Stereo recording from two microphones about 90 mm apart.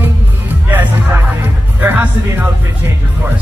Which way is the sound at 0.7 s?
20° right (ahead or behind).